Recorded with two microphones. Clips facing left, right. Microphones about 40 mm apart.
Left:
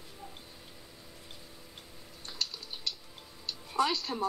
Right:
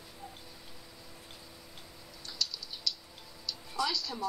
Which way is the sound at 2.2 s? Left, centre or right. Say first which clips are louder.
Even; left.